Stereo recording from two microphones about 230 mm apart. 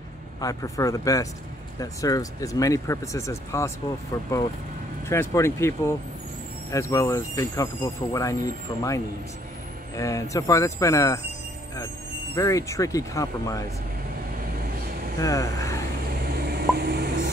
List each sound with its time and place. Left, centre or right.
0.4 s speech: centre
12.4 s speech: centre
15.2 s speech: centre
16.3 s a sound: right